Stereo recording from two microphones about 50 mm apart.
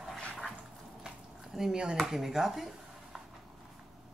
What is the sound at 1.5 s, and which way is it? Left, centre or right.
Speech, centre.